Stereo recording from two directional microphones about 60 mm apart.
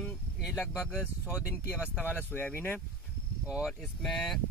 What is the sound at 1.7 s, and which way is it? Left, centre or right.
Speech, left.